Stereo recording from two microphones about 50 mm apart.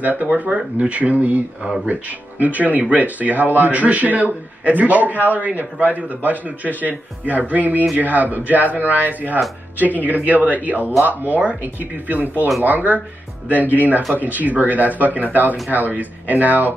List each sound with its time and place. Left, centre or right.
0.0 s speech: right